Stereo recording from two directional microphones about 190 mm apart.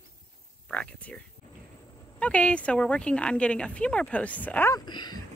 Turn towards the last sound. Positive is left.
turn(degrees=25)  # may be behind; listen again after turning